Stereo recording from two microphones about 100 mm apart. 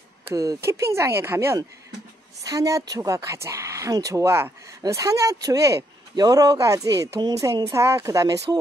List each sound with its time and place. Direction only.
0.3 s speech: 35° right (ahead or behind)
2.4 s speech: 35° right (ahead or behind)